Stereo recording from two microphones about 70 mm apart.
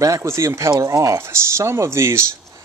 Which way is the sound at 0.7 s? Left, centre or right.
Right.